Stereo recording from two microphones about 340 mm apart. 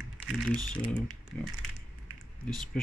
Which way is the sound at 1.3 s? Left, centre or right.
Left.